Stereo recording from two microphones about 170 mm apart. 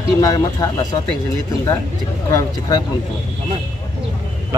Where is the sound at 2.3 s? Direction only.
20° left (ahead or behind).